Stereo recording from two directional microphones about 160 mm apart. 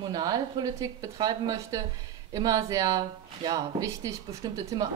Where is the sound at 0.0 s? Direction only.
25° right (ahead or behind).